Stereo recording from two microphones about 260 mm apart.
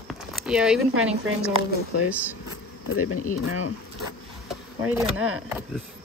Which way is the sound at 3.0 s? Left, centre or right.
Left.